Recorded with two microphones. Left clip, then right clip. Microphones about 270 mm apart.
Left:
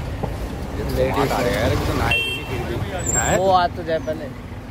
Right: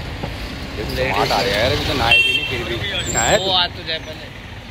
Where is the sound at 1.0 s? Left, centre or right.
Centre.